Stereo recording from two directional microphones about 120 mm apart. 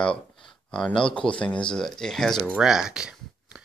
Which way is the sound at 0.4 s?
5° left (ahead or behind).